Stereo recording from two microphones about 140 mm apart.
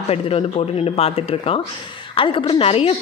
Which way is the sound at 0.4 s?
45° left (ahead or behind).